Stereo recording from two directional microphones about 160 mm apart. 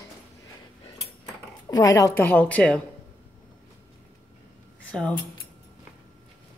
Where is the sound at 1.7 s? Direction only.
20° left (ahead or behind).